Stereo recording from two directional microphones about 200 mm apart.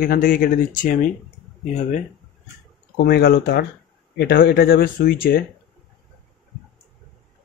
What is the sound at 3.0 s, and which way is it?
Speech, 55° left (ahead or behind).